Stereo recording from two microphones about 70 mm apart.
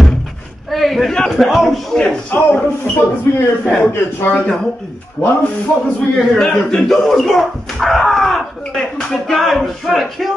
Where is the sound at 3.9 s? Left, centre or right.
Left.